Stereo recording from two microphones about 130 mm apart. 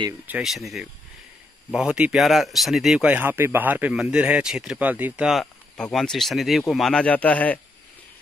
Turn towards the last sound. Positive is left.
turn(degrees=10)  # may be behind; listen again after turning